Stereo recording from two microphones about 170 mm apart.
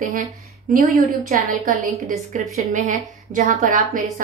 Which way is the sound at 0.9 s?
60° right (ahead or behind).